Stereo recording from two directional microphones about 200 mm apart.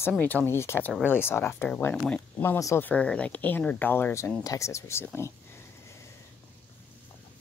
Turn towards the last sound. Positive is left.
turn(degrees=10)  # may be behind; listen again after turning